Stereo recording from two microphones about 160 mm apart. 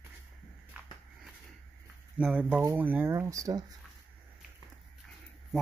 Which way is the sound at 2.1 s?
10° right (ahead or behind).